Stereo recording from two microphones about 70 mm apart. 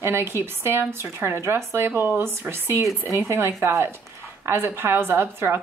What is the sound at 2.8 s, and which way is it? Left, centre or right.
A woman's voice, right.